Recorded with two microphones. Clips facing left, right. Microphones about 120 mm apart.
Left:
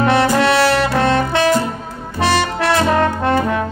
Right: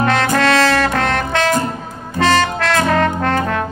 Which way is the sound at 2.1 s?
15° left (ahead or behind).